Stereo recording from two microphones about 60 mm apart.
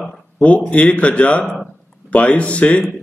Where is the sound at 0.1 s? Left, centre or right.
Left.